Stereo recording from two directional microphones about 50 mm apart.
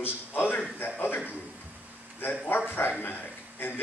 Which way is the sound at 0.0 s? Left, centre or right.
Left.